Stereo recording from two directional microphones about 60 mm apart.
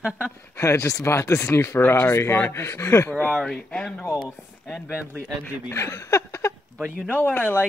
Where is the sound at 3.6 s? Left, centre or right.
Centre.